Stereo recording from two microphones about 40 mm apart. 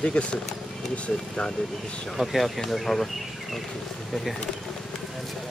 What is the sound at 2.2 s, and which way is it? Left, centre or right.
Speech, centre.